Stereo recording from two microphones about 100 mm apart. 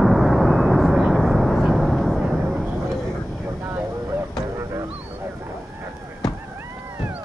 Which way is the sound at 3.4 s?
25° right (ahead or behind).